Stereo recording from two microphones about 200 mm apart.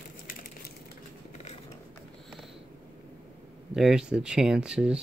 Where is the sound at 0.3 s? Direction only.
50° left (ahead or behind).